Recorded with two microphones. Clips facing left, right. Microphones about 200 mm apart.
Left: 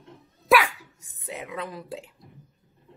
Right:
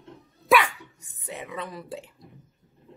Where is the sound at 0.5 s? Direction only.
Centre (ahead or behind).